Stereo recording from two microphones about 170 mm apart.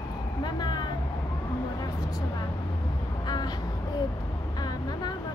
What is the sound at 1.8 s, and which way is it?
Vehicle, 25° left (ahead or behind).